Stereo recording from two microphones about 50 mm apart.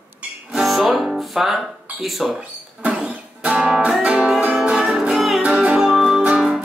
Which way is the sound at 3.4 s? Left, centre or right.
Centre.